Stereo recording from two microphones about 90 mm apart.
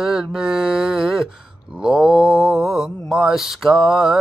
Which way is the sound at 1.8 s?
10° right (ahead or behind).